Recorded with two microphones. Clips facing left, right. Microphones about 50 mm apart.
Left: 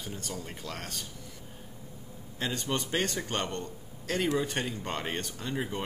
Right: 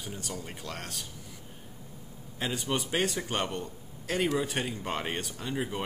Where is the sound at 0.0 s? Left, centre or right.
Centre.